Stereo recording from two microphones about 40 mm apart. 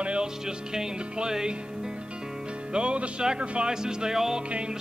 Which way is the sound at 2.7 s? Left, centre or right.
Right.